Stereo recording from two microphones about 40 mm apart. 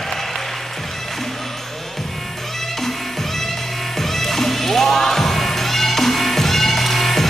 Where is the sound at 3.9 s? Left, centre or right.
Centre.